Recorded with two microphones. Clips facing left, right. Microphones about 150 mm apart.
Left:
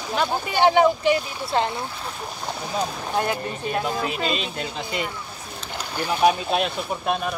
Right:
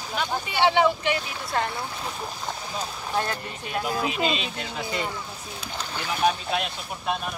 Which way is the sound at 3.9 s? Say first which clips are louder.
Even; 5° right (ahead or behind).